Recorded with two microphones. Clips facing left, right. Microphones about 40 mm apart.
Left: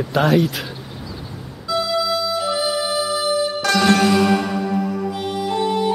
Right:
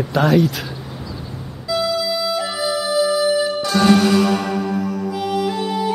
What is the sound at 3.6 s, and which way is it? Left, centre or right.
Music, left.